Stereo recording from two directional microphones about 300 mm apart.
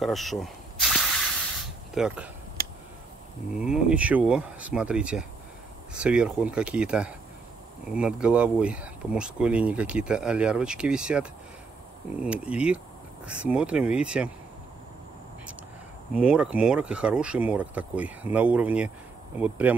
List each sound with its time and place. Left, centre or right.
0.0 s snake: centre
2.0 s speech: centre
2.6 s a sound: right
3.5 s speech: centre
16.2 s speech: centre